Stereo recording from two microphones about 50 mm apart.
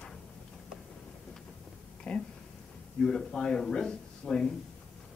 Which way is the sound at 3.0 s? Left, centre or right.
Centre.